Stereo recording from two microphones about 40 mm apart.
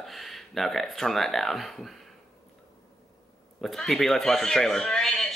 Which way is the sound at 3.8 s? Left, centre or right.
Centre.